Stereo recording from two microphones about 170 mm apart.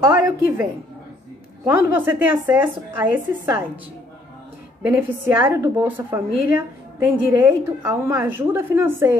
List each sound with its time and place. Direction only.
0.0 s a woman's voice: 15° right (ahead or behind)
4.8 s a woman's voice: 15° right (ahead or behind)